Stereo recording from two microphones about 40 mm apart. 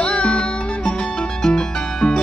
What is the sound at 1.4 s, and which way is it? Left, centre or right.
Music, centre.